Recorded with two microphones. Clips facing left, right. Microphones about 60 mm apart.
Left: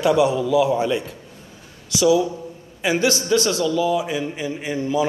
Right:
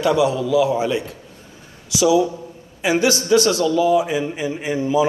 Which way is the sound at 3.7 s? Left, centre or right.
Centre.